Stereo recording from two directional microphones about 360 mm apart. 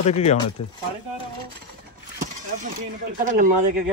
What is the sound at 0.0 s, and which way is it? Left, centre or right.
Speech, centre.